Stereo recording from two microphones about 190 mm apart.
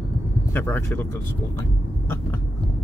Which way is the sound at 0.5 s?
10° left (ahead or behind).